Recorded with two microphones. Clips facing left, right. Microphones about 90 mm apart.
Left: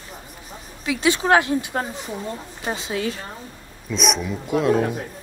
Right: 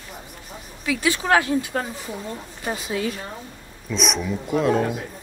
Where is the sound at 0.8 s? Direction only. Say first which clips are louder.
Left 2 dB; 25° left (ahead or behind).